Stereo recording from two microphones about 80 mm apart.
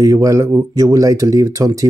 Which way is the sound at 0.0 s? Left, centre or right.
Right.